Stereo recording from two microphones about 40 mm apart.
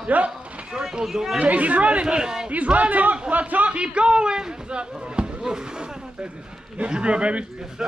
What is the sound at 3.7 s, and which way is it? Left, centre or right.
Speech, right.